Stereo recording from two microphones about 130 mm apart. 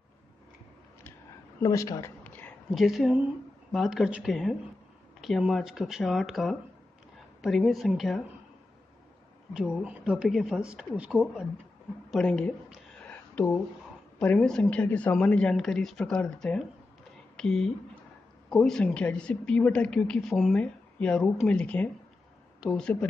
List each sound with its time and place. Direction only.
1.6 s speech: 25° left (ahead or behind)
2.2 s a sound: 15° left (ahead or behind)
2.7 s speech: centre (ahead or behind)
9.5 s speech: 5° right (ahead or behind)
12.1 s speech: 5° left (ahead or behind)
13.0 s a sound: 10° left (ahead or behind)
14.2 s speech: 10° left (ahead or behind)